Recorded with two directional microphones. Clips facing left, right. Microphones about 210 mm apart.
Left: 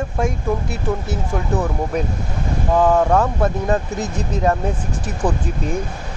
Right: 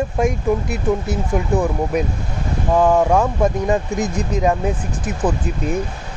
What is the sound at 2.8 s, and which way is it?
Speech, 10° right (ahead or behind).